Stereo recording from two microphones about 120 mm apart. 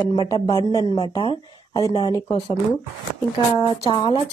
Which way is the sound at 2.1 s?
35° left (ahead or behind).